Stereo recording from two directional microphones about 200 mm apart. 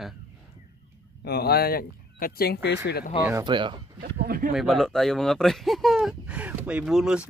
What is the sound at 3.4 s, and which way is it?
Speech, 25° right (ahead or behind).